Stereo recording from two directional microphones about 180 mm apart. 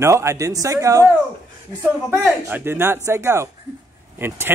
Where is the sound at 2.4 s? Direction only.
15° right (ahead or behind).